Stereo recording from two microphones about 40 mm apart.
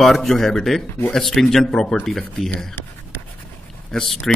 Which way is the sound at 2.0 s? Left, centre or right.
Centre.